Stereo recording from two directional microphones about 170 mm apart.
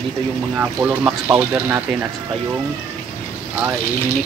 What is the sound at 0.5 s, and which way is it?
Speech, 10° right (ahead or behind).